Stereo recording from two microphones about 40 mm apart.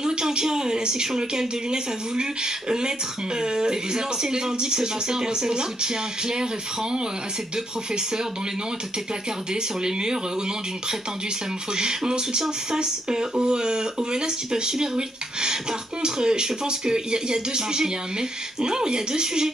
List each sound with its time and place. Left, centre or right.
0.0 s speech: centre
9.5 s speech: centre
11.7 s speech: centre